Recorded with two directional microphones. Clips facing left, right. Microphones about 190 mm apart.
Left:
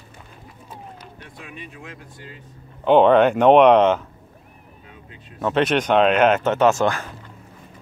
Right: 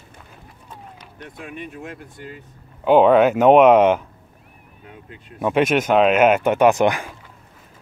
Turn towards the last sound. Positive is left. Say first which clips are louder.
# right 2 dB
turn(degrees=-15)  # may be behind; listen again after turning